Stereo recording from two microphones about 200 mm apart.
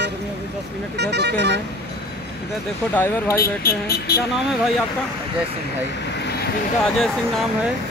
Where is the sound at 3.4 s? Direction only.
50° left (ahead or behind).